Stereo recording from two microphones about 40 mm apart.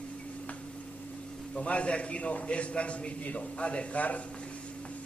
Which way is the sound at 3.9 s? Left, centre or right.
Left.